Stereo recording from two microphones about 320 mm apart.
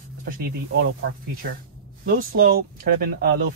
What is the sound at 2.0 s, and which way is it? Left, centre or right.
Speech, right.